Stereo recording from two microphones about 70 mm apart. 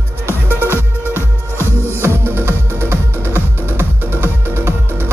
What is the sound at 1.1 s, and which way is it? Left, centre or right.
Music, right.